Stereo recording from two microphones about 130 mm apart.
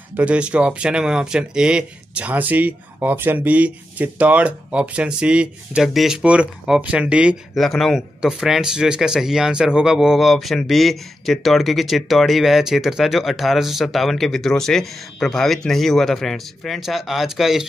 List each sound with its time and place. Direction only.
0.1 s speech: 10° right (ahead or behind)
7.5 s speech: centre (ahead or behind)